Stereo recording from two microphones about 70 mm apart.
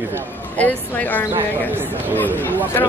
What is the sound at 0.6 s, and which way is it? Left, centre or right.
Speech, left.